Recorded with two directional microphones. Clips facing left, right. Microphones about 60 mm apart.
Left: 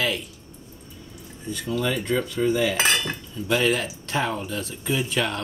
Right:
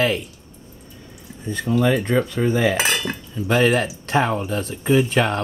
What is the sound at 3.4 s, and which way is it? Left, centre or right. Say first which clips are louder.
Speech: right 5 dB; right.